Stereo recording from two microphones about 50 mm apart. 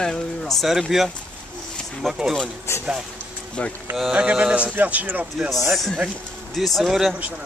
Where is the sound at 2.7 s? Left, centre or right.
Left.